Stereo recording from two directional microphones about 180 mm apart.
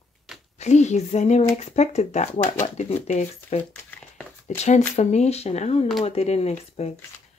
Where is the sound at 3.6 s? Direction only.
10° left (ahead or behind).